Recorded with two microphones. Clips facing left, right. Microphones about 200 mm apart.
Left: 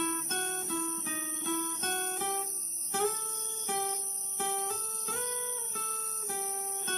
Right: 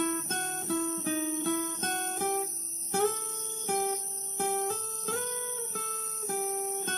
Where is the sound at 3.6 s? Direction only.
40° right (ahead or behind).